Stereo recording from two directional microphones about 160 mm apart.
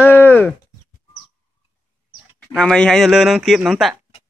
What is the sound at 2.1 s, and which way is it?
Speech, 5° left (ahead or behind).